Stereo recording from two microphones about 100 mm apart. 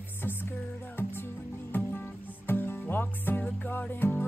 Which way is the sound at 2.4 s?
20° left (ahead or behind).